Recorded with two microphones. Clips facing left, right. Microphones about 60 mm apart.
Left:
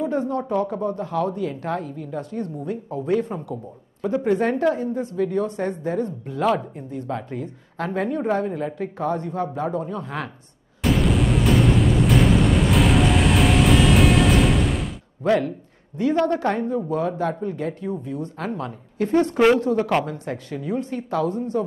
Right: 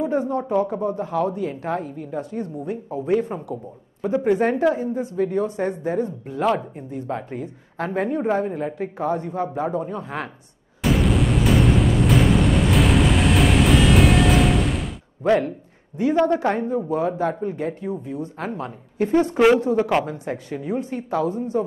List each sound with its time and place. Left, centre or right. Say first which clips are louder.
0.0 s a woman's voice: right 1 dB; centre
10.8 s a sound: even; centre
15.2 s a woman's voice: right 1 dB; centre
19.3 s speech: right 1 dB; centre
19.6 s a woman's voice: right 1 dB; centre